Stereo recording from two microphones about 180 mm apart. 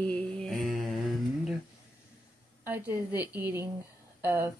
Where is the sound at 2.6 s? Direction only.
15° right (ahead or behind).